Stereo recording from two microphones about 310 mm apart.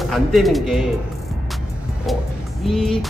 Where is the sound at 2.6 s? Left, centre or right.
Centre.